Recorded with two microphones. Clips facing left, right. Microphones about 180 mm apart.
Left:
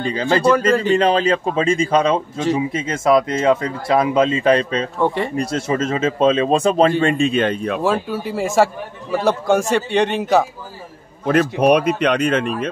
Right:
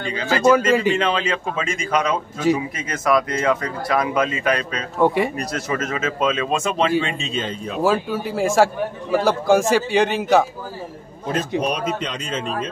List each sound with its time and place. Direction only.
0.0 s speech: 35° left (ahead or behind)
0.7 s speech: 5° right (ahead or behind)
0.9 s speech: 35° left (ahead or behind)
4.9 s speech: 10° right (ahead or behind)
5.3 s speech: 25° left (ahead or behind)
7.0 s speech: 50° left (ahead or behind)
7.8 s a man's voice: centre (ahead or behind)
11.2 s speech: 65° left (ahead or behind)